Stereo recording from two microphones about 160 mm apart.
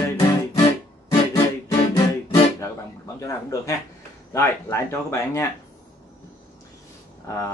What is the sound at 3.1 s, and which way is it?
Speech, 20° left (ahead or behind).